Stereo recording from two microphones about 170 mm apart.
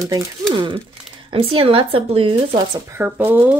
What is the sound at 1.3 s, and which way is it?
Speech, 35° right (ahead or behind).